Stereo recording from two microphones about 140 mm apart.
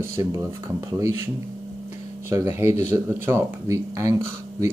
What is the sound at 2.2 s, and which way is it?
Speech, 20° right (ahead or behind).